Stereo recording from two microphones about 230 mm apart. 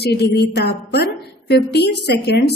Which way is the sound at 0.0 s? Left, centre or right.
Left.